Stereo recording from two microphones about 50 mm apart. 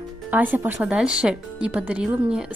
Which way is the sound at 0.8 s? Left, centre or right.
Centre.